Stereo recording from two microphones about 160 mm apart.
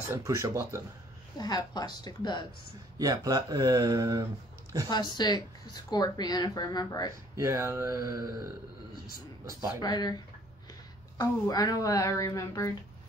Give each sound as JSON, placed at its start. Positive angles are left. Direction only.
{"t": 0.1, "sound": "speech", "side_deg": -20}
{"t": 1.4, "sound": "speech", "side_deg": 25}
{"t": 3.0, "sound": "speech", "side_deg": -25}
{"t": 4.8, "sound": "speech", "side_deg": 25}
{"t": 7.3, "sound": "speech", "side_deg": -20}
{"t": 9.8, "sound": "speech", "side_deg": 25}